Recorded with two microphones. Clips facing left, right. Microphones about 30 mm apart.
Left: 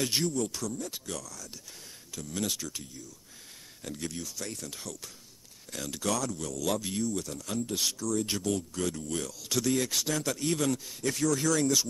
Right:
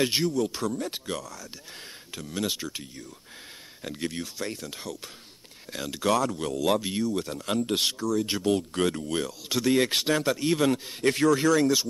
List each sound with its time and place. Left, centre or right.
0.0 s speech: right
0.6 s speech: right
8.0 s speech: right
8.5 s speech: right
9.8 s speech: right